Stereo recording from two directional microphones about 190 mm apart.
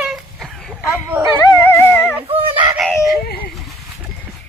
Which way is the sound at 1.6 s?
10° left (ahead or behind).